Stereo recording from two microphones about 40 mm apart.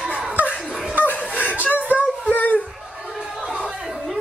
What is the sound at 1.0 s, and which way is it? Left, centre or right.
Chuckle, left.